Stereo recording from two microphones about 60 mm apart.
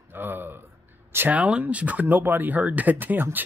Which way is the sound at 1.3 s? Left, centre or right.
Right.